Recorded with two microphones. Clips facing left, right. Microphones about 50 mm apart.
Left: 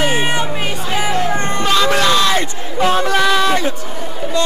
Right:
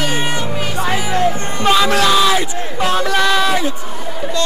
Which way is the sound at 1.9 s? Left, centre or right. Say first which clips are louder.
Right 1 dB; centre.